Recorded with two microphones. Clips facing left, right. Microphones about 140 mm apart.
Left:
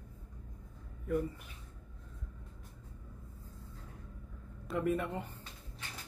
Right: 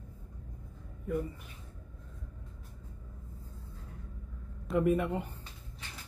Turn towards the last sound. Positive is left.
turn(degrees=-15)  # may be behind; listen again after turning